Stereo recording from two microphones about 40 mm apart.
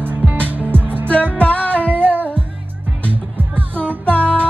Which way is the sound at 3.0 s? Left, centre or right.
Right.